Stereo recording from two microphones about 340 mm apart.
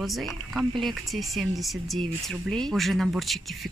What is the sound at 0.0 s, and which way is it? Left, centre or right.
Speech, centre.